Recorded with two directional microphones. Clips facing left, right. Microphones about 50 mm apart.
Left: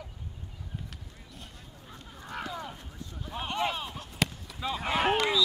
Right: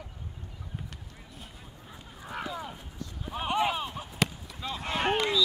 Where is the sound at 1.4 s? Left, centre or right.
Centre.